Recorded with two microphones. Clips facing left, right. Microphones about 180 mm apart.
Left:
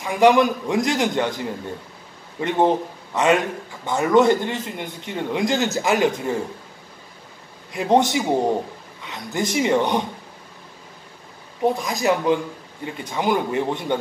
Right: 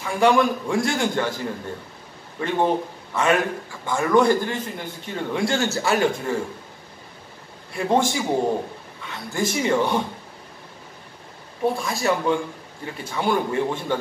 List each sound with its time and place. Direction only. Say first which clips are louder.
0.0 s a man's voice: left 3 dB; 15° left (ahead or behind)
7.7 s a man's voice: left 3 dB; 20° left (ahead or behind)
11.6 s a man's voice: left 2 dB; 20° left (ahead or behind)